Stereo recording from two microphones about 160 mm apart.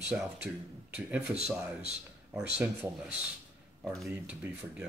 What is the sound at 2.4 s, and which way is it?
Speech, 5° right (ahead or behind).